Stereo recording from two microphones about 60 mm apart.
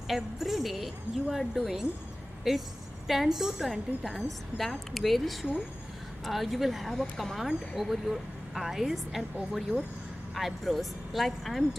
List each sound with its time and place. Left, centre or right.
0.1 s a woman's voice: centre